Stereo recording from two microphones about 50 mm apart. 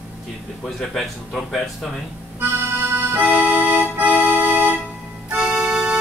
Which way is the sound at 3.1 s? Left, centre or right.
Right.